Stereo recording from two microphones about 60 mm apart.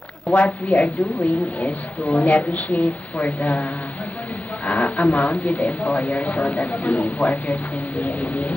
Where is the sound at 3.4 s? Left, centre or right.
Left.